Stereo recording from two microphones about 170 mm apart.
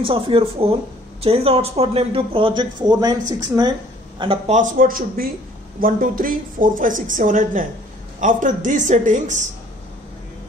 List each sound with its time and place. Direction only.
0.0 s a woman's voice: 30° right (ahead or behind); by 3.7 s 15° right (ahead or behind)
4.2 s speech: 30° right (ahead or behind)
4.6 s a man's voice: 50° right (ahead or behind)